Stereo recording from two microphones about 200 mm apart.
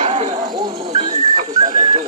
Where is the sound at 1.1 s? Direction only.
35° right (ahead or behind).